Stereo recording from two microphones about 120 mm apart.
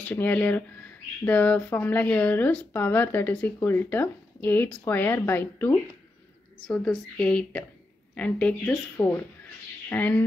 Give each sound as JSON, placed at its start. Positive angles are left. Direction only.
{"t": 0.0, "sound": "speech", "side_deg": 15}
{"t": 6.7, "sound": "speech", "side_deg": 5}